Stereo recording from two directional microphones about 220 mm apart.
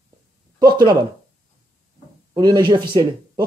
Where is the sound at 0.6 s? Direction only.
20° right (ahead or behind).